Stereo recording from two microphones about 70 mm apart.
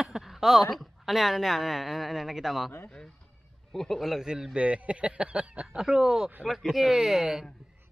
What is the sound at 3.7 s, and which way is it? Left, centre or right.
Speech, centre.